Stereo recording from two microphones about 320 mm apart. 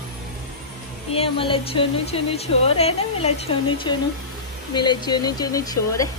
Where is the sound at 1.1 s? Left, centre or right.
Centre.